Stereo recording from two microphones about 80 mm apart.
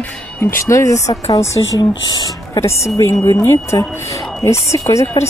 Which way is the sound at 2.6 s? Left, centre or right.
Left.